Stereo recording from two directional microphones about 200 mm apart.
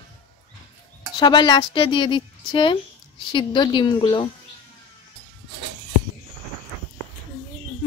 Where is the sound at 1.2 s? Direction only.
20° left (ahead or behind).